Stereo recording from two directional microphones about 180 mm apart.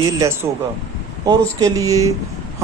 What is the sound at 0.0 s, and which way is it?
A man's voice, 15° right (ahead or behind).